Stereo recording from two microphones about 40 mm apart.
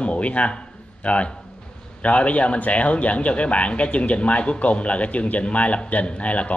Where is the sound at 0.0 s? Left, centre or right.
Left.